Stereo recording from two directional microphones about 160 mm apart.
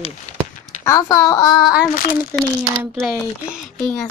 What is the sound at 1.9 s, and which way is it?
Speech, 60° left (ahead or behind).